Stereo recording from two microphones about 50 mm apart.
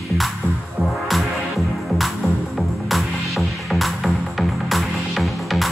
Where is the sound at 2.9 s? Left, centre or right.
Centre.